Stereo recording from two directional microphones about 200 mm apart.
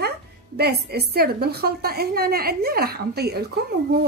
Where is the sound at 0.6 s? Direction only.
55° right (ahead or behind).